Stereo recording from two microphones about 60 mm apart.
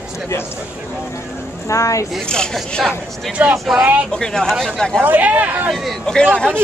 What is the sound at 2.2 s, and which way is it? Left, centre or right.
Speech, centre.